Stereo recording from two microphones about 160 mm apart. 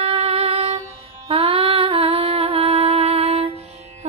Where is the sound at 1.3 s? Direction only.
35° right (ahead or behind).